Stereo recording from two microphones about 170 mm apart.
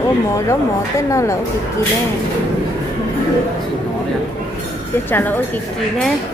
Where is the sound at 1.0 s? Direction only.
15° left (ahead or behind).